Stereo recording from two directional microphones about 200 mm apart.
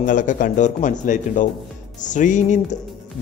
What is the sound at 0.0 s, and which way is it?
A man's voice, 40° left (ahead or behind).